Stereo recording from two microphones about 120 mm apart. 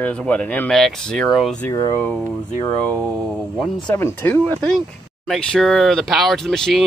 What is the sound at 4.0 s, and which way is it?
Speech, 15° left (ahead or behind).